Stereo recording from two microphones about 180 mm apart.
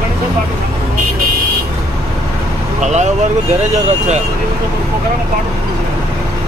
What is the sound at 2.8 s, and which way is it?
Vehicle, 40° right (ahead or behind).